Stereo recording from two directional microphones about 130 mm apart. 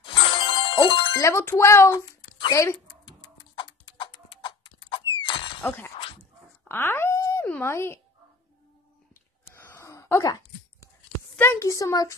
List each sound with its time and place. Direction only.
0.0 s ding: 40° left (ahead or behind)
1.1 s speech: 20° left (ahead or behind)
3.1 s horse: 35° left (ahead or behind)
5.6 s speech: 15° left (ahead or behind)
6.7 s wail: 15° left (ahead or behind)
7.4 s speech: 15° left (ahead or behind)
9.5 s a sound: 20° left (ahead or behind)
11.3 s speech: 20° left (ahead or behind)